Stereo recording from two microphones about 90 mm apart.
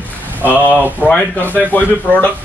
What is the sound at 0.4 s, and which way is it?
Speech, 20° right (ahead or behind).